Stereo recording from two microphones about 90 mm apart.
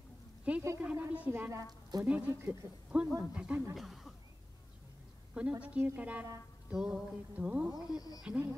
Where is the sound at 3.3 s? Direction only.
10° right (ahead or behind).